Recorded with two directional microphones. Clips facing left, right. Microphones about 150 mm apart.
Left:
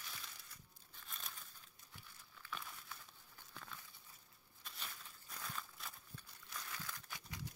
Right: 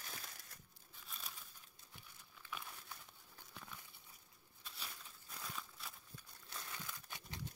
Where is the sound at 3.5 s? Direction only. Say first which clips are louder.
Even; 15° right (ahead or behind).